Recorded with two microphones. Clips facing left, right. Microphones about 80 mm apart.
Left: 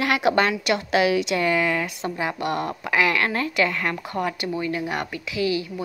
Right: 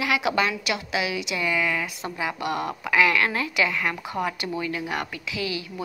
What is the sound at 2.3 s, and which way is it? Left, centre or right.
A woman's voice, left.